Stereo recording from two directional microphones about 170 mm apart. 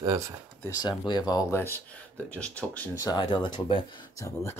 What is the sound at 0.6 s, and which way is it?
Speech, 20° left (ahead or behind).